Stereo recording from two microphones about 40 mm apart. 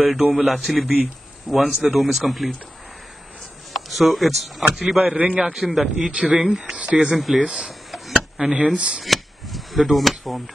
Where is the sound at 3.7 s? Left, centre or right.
Centre.